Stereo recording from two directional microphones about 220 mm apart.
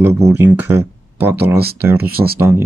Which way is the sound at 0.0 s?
10° right (ahead or behind).